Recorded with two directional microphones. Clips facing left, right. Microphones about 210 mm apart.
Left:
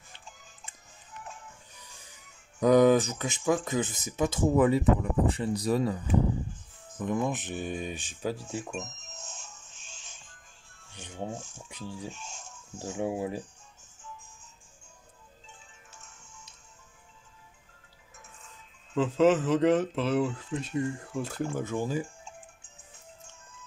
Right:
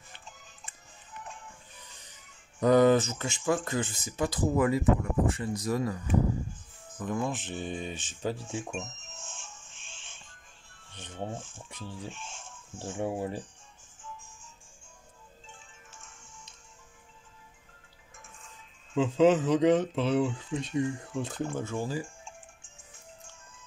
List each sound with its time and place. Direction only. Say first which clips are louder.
2.6 s speech: left 1 dB; 15° left (ahead or behind); by 5.9 s 30° left (ahead or behind)
7.0 s speech: left 2 dB; 20° left (ahead or behind)
8.7 s music: even; 40° left (ahead or behind)
10.9 s rub: left 1 dB; 10° left (ahead or behind)
11.5 s speech: left 2 dB; 10° left (ahead or behind)
12.1 s music: even; 40° left (ahead or behind)
12.8 s speech: left 1 dB; 10° left (ahead or behind)
18.9 s speech: even; 5° left (ahead or behind)